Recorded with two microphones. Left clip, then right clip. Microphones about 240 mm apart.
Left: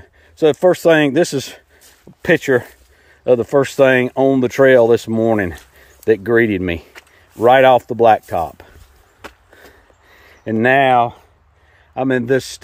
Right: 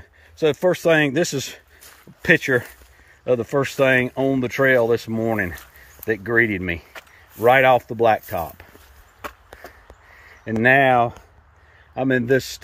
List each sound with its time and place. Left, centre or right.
0.4 s speech: left
10.1 s a man's voice: left